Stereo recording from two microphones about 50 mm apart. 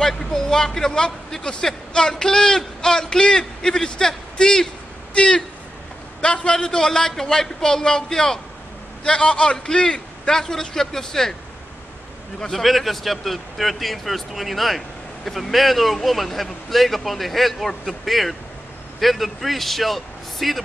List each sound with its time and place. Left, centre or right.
0.0 s a man's voice: centre
12.4 s speech: centre